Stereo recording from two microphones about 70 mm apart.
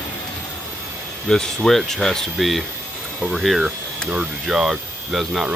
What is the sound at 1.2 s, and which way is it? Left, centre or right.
Speech, centre.